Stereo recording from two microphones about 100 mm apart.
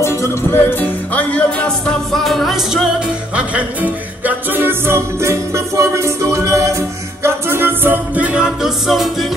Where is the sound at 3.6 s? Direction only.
15° right (ahead or behind).